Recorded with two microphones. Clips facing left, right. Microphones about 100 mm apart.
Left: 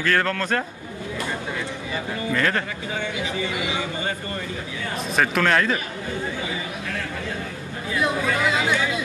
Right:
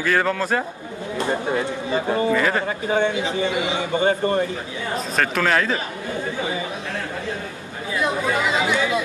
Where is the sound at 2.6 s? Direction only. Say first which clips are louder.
Right 9 dB; 35° right (ahead or behind).